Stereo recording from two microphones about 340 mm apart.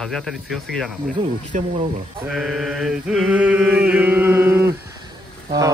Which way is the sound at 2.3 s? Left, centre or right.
Centre.